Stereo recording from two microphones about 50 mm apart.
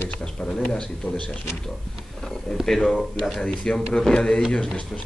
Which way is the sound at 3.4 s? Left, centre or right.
Centre.